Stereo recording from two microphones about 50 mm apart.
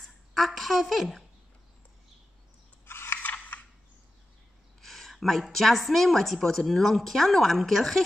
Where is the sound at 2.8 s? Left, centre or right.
Left.